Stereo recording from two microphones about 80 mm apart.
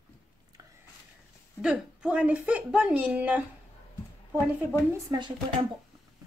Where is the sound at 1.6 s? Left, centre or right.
Centre.